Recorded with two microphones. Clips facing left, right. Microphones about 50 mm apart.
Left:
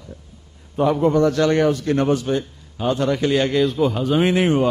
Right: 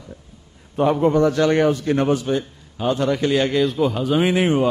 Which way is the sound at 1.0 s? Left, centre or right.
Centre.